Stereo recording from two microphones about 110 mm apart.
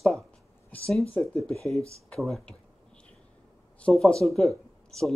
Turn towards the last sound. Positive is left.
turn(degrees=5)  # may be behind; listen again after turning